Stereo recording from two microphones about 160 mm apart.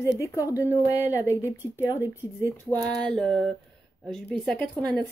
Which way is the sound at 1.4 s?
15° left (ahead or behind).